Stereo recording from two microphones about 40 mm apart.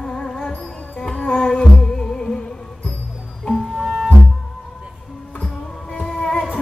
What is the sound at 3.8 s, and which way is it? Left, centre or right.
Music, centre.